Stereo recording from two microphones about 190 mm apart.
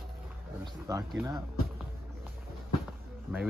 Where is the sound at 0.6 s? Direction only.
15° right (ahead or behind).